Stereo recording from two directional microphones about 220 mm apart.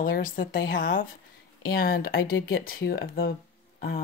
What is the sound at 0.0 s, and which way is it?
Speech, 40° left (ahead or behind).